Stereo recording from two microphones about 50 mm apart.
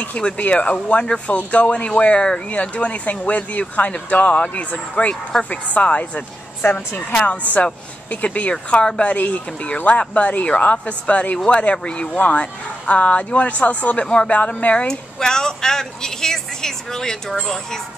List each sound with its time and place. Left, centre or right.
0.2 s speech: left
5.3 s a woman's voice: centre
5.8 s speech: left
6.6 s a woman's voice: left
9.1 s speech: left
11.3 s a woman's voice: centre
14.9 s a woman's voice: centre